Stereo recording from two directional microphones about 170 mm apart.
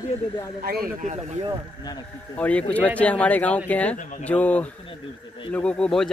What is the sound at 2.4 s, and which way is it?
Speech, 10° left (ahead or behind).